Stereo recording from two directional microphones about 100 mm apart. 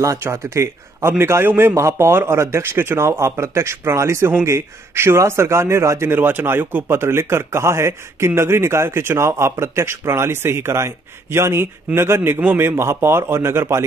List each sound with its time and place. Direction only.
0.0 s a man's voice: 30° right (ahead or behind)